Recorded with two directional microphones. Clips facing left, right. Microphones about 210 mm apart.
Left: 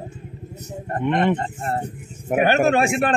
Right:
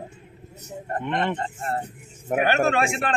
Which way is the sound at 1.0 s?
15° left (ahead or behind).